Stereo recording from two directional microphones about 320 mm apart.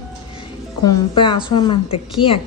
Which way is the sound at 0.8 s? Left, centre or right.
Centre.